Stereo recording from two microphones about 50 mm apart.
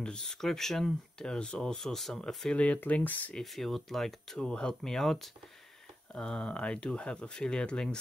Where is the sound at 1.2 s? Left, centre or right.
Centre.